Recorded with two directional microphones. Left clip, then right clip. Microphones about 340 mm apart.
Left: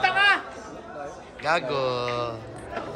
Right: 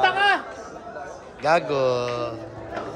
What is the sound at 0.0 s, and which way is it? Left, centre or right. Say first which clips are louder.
Chatter: right 1 dB; right.